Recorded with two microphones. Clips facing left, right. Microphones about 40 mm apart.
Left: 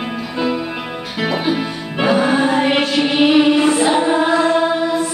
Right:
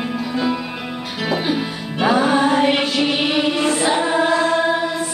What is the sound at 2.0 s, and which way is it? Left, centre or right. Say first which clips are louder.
Chant: left 1 dB; centre.